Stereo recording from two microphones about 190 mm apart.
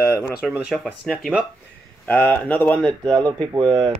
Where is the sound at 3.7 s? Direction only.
25° right (ahead or behind).